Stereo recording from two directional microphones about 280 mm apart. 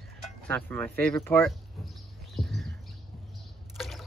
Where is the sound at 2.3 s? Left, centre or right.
Centre.